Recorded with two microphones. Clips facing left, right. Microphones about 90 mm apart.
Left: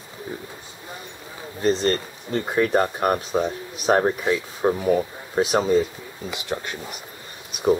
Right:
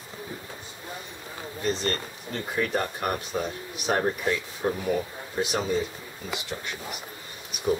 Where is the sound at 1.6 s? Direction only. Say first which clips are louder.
Left 7 dB; 35° left (ahead or behind).